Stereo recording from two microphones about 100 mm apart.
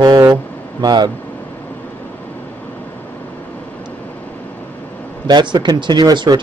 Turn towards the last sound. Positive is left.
turn(degrees=-45)  # may be behind; listen again after turning